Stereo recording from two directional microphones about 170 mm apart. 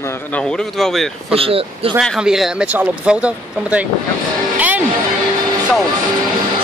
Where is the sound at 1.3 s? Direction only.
35° right (ahead or behind).